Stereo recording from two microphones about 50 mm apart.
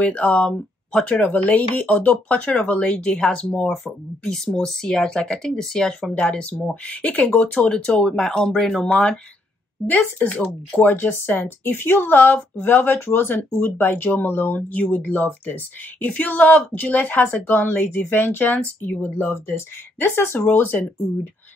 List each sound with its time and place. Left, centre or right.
0.0 s speech: left
1.3 s speech: left
2.8 s speech: centre
3.6 s speech: centre
6.1 s speech: left
9.8 s speech: left
18.9 s speech: left
19.3 s speech: left
20.4 s speech: left